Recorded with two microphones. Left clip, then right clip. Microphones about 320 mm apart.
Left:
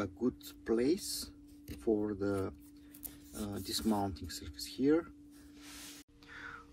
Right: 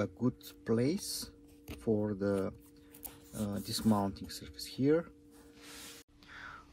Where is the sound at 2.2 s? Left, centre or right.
Centre.